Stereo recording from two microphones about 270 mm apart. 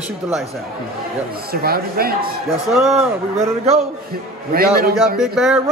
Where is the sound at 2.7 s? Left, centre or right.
Centre.